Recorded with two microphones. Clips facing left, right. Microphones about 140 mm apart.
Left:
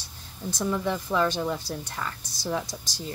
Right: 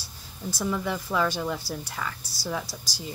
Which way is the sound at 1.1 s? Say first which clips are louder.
Left 1 dB; 10° left (ahead or behind).